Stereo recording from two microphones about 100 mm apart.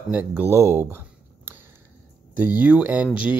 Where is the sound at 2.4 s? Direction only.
15° right (ahead or behind).